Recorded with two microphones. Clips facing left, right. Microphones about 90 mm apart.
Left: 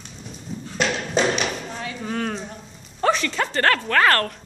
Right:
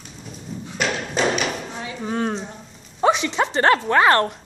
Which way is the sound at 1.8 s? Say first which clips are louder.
Right 3 dB; 20° right (ahead or behind).